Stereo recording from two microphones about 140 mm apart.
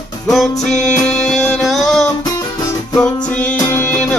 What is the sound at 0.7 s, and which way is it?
Music, 5° left (ahead or behind).